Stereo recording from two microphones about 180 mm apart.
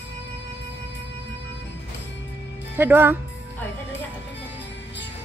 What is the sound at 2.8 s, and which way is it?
Speech, 10° right (ahead or behind).